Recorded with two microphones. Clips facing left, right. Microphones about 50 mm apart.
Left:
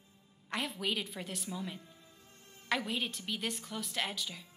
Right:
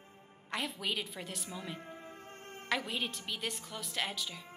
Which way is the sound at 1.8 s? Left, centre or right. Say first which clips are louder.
Right 11 dB; right.